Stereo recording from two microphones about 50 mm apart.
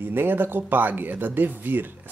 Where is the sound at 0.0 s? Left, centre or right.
Right.